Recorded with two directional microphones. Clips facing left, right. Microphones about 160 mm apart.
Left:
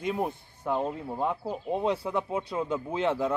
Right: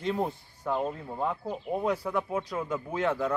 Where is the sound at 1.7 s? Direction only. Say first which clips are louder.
Left 1 dB; 25° left (ahead or behind).